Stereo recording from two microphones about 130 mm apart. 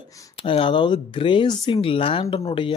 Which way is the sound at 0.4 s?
45° left (ahead or behind).